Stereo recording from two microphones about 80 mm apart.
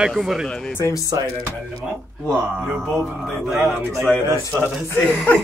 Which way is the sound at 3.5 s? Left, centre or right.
Centre.